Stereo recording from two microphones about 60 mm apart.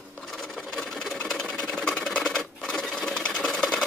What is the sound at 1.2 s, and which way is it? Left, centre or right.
Sewing machine, centre.